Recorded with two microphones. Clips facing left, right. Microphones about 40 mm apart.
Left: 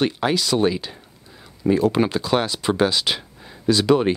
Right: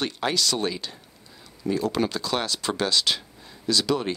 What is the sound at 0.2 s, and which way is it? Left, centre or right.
Speech, centre.